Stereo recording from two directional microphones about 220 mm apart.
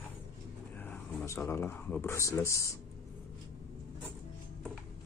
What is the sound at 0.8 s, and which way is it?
Speech, 10° left (ahead or behind).